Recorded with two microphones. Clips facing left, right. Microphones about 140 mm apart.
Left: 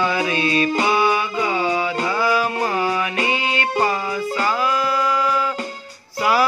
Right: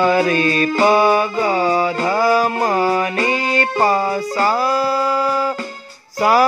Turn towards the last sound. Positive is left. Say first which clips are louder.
# right 4 dB
turn(degrees=-40)  # may be behind; listen again after turning